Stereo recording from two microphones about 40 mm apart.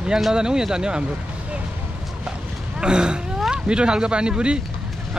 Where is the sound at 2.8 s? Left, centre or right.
Right.